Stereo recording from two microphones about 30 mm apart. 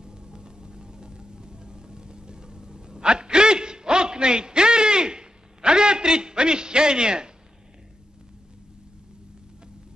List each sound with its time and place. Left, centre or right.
0.0 s music: right